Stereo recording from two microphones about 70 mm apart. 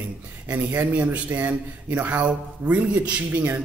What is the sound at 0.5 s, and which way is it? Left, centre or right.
A man's voice, right.